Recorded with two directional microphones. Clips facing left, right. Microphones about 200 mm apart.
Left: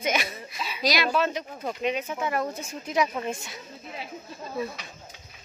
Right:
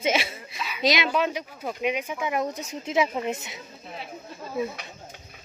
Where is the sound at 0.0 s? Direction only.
25° right (ahead or behind).